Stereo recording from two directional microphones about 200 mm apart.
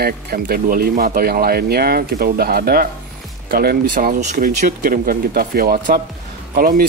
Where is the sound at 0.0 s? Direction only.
50° right (ahead or behind).